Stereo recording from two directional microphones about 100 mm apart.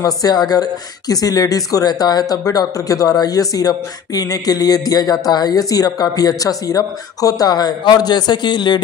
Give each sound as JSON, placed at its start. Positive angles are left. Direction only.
{"t": 0.0, "sound": "speech", "side_deg": 40}